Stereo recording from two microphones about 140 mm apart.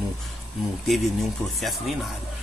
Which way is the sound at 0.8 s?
Centre (ahead or behind).